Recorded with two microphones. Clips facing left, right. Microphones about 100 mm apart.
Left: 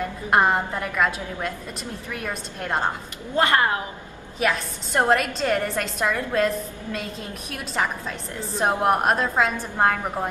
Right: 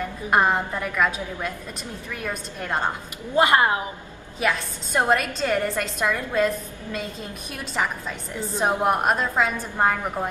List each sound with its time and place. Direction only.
0.3 s a woman's voice: centre (ahead or behind)
3.3 s a woman's voice: 15° right (ahead or behind)
4.4 s a woman's voice: centre (ahead or behind)
8.5 s a woman's voice: centre (ahead or behind)